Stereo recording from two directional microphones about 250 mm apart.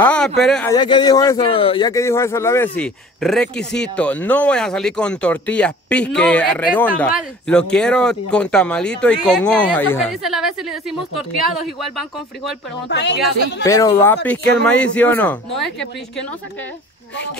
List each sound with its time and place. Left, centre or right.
0.0 s a sound: centre
0.4 s speech: centre
0.7 s a man's voice: centre
12.8 s speech: left
13.7 s a man's voice: centre